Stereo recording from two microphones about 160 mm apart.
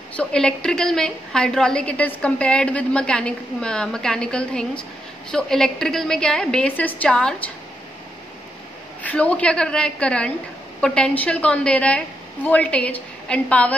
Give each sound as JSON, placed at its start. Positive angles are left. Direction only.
{"t": 0.1, "sound": "a woman's voice", "side_deg": 5}
{"t": 9.0, "sound": "a woman's voice", "side_deg": 10}